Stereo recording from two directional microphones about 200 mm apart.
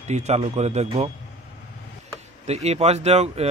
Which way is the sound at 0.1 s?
35° right (ahead or behind).